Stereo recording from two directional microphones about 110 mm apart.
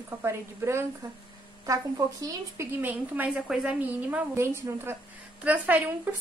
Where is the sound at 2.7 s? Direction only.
15° right (ahead or behind).